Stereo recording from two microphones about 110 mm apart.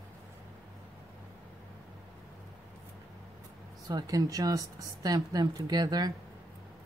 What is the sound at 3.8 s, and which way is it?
Speech, 35° right (ahead or behind).